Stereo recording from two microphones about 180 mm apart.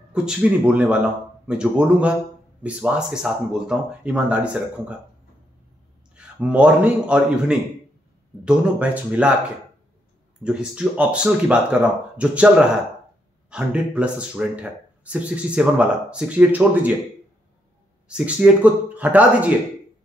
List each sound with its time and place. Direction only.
0.1 s speech: 5° right (ahead or behind)
6.1 s speech: 5° right (ahead or behind)
10.4 s speech: 5° right (ahead or behind)
18.0 s speech: 5° right (ahead or behind)